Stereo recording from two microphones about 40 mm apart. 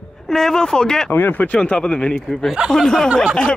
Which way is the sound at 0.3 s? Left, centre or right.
Centre.